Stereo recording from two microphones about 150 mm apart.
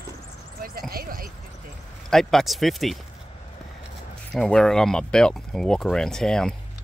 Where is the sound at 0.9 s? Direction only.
75° right (ahead or behind).